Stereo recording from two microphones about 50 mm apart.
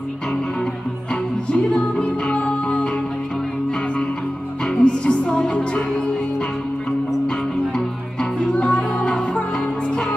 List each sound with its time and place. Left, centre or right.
1.5 s music: centre
4.7 s music: left
8.2 s music: centre